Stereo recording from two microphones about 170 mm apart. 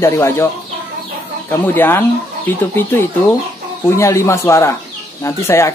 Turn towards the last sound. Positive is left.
turn(degrees=15)  # may be behind; listen again after turning